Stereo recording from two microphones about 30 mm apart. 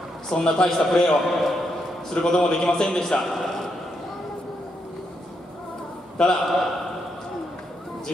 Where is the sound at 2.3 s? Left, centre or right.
Left.